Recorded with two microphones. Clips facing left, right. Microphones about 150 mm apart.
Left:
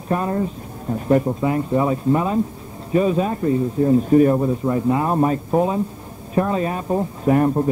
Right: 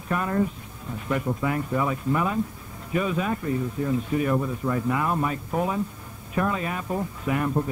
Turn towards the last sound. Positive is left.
turn(degrees=40)  # may be behind; listen again after turning